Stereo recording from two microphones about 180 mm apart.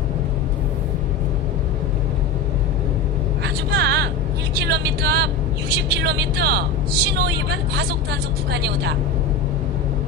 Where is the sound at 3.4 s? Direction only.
70° right (ahead or behind).